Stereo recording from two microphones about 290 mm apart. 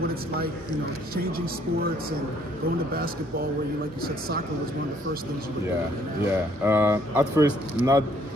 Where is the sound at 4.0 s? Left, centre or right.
Right.